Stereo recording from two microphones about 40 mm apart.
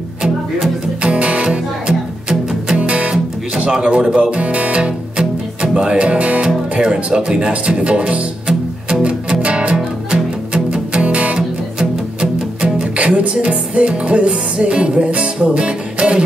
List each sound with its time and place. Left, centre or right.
1.0 s music: right
2.8 s music: right
3.5 s a sound: centre
4.1 s music: right
6.8 s speech: right
8.5 s music: right
11.8 s music: centre